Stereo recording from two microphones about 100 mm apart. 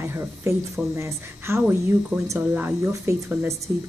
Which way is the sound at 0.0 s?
25° right (ahead or behind).